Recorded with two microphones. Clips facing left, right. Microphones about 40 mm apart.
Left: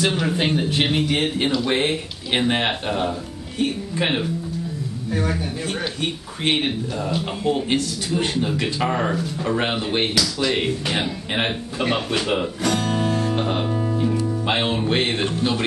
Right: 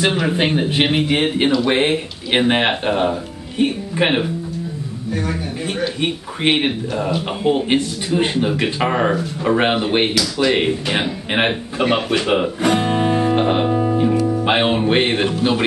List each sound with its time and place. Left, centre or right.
0.0 s speech: right
5.9 s speech: right
11.8 s guitar: centre
14.2 s speech: right